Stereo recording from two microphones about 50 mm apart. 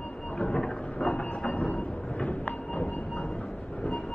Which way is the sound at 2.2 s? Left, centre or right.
Left.